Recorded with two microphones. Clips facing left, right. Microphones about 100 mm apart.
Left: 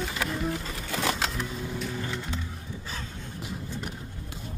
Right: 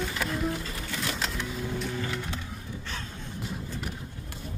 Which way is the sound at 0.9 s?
70° left (ahead or behind).